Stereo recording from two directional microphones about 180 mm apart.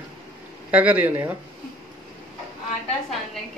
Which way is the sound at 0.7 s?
10° right (ahead or behind).